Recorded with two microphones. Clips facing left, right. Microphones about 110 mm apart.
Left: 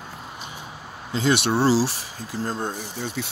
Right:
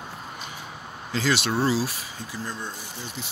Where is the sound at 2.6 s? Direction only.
65° left (ahead or behind).